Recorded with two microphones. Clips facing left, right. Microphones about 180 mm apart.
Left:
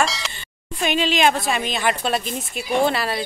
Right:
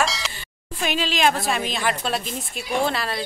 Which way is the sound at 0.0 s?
Centre (ahead or behind).